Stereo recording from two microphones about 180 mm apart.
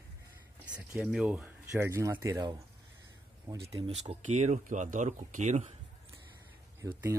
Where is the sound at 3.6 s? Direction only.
35° right (ahead or behind).